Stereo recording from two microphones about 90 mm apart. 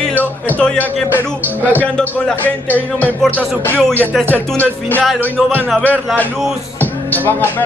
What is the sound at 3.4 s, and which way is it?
Speech, 15° left (ahead or behind).